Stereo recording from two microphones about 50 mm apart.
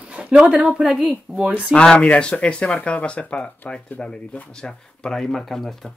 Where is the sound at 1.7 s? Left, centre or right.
Centre.